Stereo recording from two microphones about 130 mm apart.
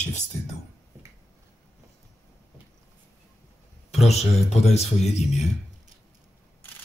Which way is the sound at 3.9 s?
55° left (ahead or behind).